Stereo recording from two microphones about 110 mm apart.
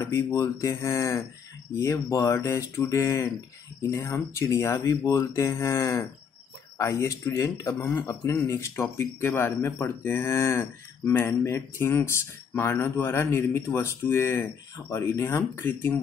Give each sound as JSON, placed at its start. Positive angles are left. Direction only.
{"t": 0.0, "sound": "speech", "side_deg": 25}